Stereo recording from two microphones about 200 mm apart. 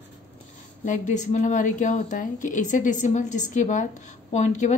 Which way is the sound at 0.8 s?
40° left (ahead or behind).